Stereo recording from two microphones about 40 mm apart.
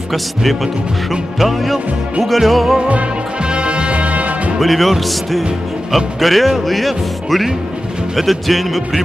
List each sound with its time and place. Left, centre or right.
0.1 s music: centre
3.4 s music: right
4.6 s music: centre